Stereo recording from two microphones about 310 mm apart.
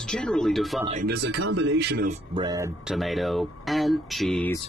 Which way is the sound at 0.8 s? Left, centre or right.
Right.